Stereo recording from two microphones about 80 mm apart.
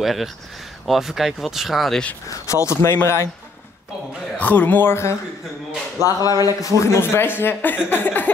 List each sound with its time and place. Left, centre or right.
0.0 s speech: centre
2.4 s speech: left
4.4 s speech: left
6.2 s speech: left
6.8 s speech: left